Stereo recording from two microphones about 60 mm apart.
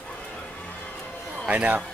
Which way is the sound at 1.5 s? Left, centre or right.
Right.